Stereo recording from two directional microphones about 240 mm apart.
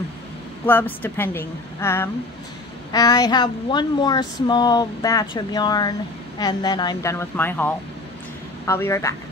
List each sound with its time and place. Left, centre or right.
0.7 s speech: centre